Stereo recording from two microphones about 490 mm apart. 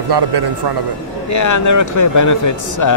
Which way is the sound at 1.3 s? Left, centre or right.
Left.